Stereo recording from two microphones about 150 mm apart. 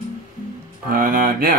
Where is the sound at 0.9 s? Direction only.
70° right (ahead or behind).